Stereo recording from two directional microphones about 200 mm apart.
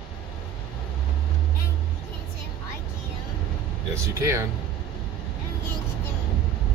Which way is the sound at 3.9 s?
15° right (ahead or behind).